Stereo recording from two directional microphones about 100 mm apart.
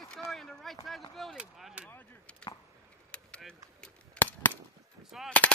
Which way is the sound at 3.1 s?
10° left (ahead or behind).